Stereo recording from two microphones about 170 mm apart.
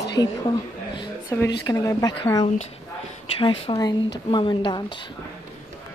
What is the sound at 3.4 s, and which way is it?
Speech, 30° left (ahead or behind).